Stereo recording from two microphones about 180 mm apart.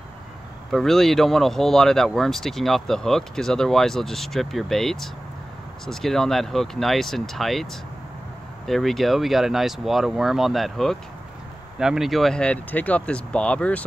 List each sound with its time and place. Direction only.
0.7 s speech: centre (ahead or behind)
8.6 s speech: centre (ahead or behind)